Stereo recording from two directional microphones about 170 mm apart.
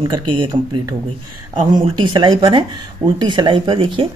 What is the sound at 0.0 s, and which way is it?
Speech, 25° right (ahead or behind).